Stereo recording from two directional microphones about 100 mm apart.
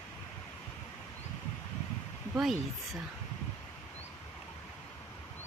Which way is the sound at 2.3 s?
Centre (ahead or behind).